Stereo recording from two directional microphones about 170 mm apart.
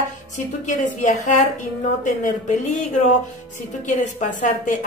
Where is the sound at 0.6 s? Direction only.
45° left (ahead or behind).